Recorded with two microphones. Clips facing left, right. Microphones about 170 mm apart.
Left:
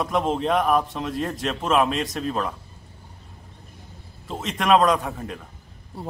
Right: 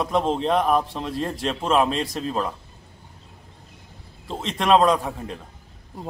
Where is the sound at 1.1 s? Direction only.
30° right (ahead or behind).